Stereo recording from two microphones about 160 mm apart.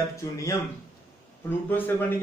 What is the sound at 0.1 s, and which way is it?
Speech, 20° left (ahead or behind).